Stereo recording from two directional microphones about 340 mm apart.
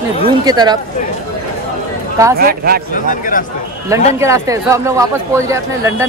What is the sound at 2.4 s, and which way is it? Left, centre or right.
Speech, right.